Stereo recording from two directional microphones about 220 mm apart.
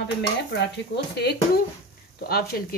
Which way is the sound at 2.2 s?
45° left (ahead or behind).